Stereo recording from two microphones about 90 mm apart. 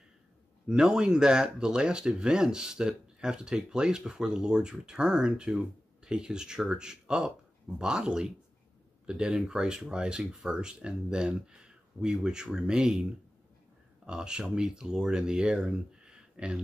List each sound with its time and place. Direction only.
0.7 s speech: 10° right (ahead or behind)
14.0 s speech: 10° right (ahead or behind)